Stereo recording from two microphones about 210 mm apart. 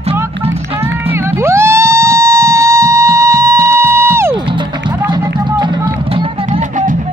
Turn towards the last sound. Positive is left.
turn(degrees=-35)  # may be behind; listen again after turning